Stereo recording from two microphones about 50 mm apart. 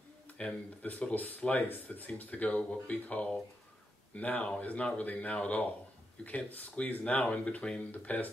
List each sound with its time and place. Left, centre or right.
0.4 s speech: left